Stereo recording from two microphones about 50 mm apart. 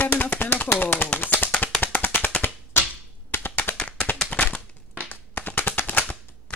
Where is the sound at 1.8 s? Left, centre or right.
Left.